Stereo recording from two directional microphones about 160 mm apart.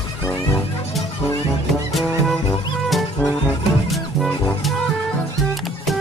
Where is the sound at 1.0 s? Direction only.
Centre (ahead or behind).